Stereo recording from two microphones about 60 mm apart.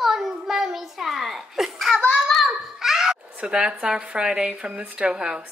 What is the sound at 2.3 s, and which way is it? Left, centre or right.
Babbling, centre.